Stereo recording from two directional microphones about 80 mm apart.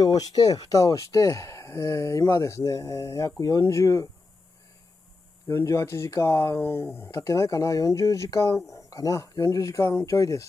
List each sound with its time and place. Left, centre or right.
0.0 s speech: left
5.5 s speech: left